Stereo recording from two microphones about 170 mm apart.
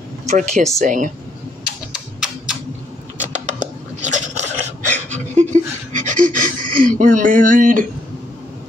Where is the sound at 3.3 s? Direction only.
45° right (ahead or behind).